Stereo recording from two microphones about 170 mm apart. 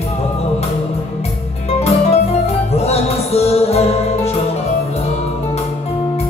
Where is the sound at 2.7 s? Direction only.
35° left (ahead or behind).